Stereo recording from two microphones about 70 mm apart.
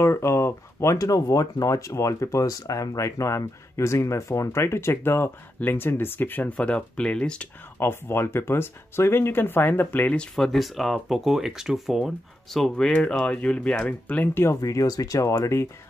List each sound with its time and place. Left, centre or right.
0.0 s speech: left
6.5 s speech: centre
7.8 s speech: left
10.3 s speech: centre
12.5 s speech: centre; by 14.4 s left
14.6 s speech: left